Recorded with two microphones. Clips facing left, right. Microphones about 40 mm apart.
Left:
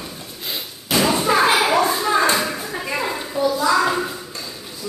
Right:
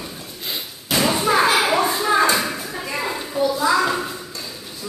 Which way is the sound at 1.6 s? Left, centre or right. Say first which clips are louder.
Left 1 dB; centre.